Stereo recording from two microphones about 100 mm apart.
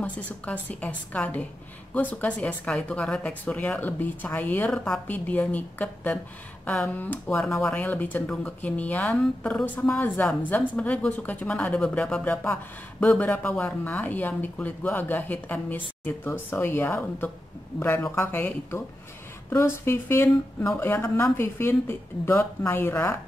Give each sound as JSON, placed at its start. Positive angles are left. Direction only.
{"t": 0.0, "sound": "speech", "side_deg": 15}
{"t": 4.6, "sound": "a woman's voice", "side_deg": 5}
{"t": 5.0, "sound": "speech", "side_deg": 15}
{"t": 9.8, "sound": "speech", "side_deg": 20}